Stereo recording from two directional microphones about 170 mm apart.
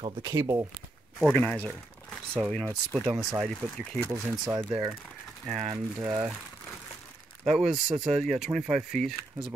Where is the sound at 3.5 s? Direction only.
5° left (ahead or behind).